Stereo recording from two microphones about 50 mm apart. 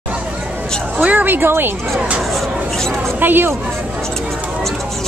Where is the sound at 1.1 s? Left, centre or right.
Right.